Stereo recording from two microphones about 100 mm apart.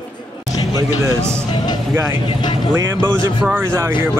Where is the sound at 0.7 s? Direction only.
25° right (ahead or behind).